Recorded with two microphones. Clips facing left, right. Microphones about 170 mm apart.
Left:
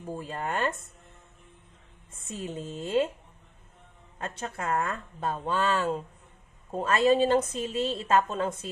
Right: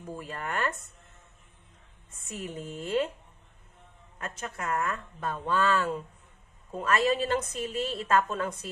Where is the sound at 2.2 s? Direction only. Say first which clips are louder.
Left 2 dB; 25° left (ahead or behind).